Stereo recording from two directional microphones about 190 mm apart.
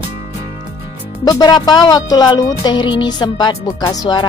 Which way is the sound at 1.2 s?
20° left (ahead or behind).